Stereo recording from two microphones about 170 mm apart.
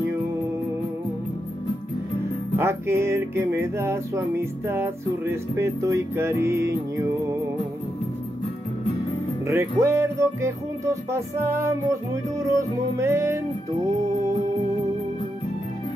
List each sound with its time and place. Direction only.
2.5 s music: 15° right (ahead or behind)
9.5 s music: 15° right (ahead or behind)